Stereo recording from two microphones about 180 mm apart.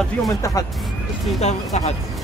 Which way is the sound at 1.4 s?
35° left (ahead or behind).